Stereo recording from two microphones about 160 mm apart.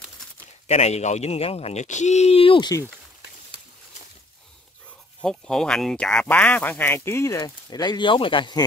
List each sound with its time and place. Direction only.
0.7 s speech: 40° left (ahead or behind)
5.2 s speech: 5° left (ahead or behind); by 8.6 s 30° left (ahead or behind)